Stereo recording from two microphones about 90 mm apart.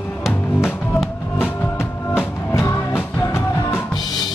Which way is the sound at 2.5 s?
30° left (ahead or behind).